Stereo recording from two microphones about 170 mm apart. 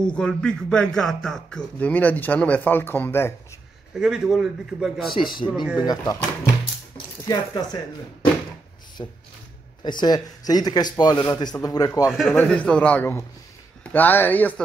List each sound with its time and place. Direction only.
0.0 s speech: 5° left (ahead or behind)
3.9 s a man's voice: 5° right (ahead or behind)
5.8 s a man's voice: 25° left (ahead or behind)
7.2 s a man's voice: 25° left (ahead or behind)
9.0 s a man's voice: 25° left (ahead or behind)
12.1 s a man's voice: centre (ahead or behind)